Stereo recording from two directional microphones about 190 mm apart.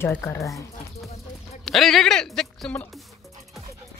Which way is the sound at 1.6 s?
Centre (ahead or behind).